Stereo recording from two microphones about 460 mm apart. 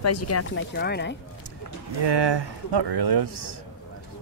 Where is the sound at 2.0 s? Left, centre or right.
Right.